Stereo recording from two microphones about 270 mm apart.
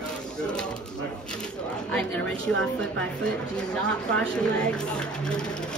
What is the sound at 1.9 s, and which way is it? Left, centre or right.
Speech, centre.